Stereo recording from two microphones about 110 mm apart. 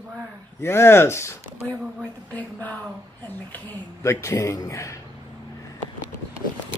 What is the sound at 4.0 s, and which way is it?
Speech, 25° left (ahead or behind).